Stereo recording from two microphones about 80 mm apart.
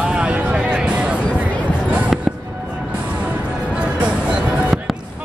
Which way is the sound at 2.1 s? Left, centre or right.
Centre.